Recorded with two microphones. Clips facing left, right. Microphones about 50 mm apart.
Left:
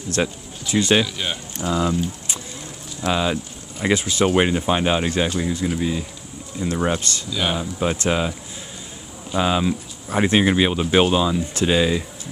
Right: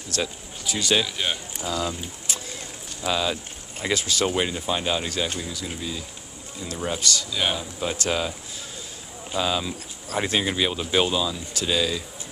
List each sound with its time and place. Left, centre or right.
0.1 s speech: left
1.0 s speech: centre
1.6 s speech: left
7.2 s speech: centre
7.5 s speech: left